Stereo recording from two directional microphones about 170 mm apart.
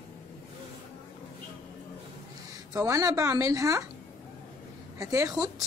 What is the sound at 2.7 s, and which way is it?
A woman's voice, 20° right (ahead or behind).